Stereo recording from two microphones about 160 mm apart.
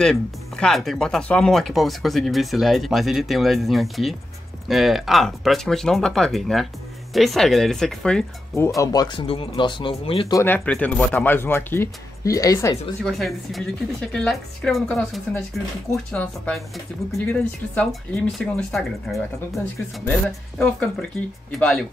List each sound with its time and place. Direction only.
0.0 s speech: 5° left (ahead or behind)
8.5 s speech: 15° left (ahead or behind); by 10.2 s 35° left (ahead or behind)
10.3 s speech: 15° left (ahead or behind)
13.0 s speech: centre (ahead or behind)